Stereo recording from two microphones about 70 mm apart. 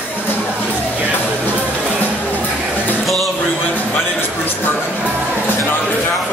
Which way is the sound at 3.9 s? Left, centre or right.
Left.